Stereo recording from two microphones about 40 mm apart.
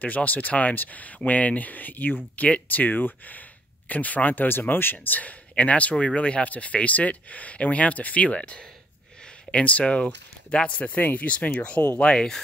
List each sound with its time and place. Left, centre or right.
0.0 s speech: left
5.0 s speech: left
5.6 s speech: left
9.5 s speech: left
10.8 s speech: left
12.0 s speech: left